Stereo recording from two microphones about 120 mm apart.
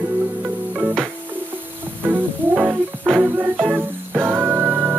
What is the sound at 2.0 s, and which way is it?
Music, 15° right (ahead or behind).